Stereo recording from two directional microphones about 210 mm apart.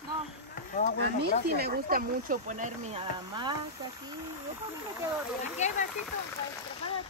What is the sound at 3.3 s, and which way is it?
Speech, 20° right (ahead or behind).